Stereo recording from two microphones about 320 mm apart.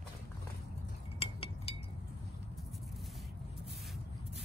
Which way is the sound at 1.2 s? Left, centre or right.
Centre.